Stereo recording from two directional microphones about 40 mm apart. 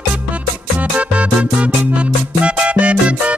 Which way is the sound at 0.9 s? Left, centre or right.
Right.